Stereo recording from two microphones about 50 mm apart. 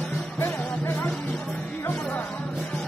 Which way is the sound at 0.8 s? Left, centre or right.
Left.